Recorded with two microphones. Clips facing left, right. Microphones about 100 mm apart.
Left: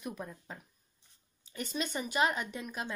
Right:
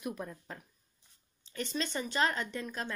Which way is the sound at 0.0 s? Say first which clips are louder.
Right 2 dB; centre (ahead or behind).